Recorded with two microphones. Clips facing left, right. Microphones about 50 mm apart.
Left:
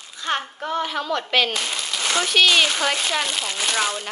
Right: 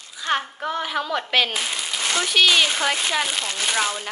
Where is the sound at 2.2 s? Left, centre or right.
Centre.